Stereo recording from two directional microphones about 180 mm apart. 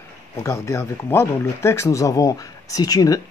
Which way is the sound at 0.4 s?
15° left (ahead or behind).